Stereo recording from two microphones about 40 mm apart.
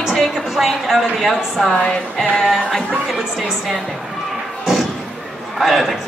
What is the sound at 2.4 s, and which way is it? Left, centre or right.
Speech, centre.